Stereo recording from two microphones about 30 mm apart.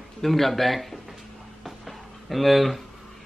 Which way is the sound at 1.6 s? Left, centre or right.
Centre.